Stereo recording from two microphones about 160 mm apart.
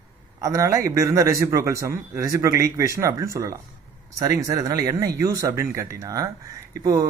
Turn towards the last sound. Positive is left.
turn(degrees=-20)  # may be behind; listen again after turning